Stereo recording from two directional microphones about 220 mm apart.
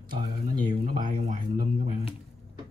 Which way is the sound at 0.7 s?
25° right (ahead or behind).